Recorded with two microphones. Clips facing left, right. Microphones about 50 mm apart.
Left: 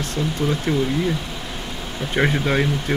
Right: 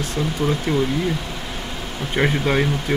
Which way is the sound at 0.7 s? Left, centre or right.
Centre.